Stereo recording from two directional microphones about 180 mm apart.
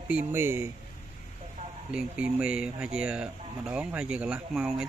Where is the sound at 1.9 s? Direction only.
5° right (ahead or behind).